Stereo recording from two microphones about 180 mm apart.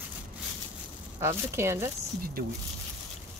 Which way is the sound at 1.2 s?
15° right (ahead or behind).